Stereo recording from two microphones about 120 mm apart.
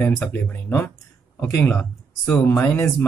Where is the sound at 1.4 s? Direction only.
15° left (ahead or behind).